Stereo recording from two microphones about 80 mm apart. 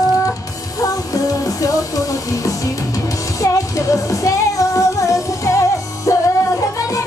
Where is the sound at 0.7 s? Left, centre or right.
Left.